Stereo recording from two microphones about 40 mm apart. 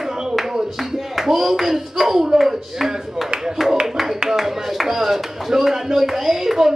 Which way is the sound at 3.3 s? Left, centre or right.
Centre.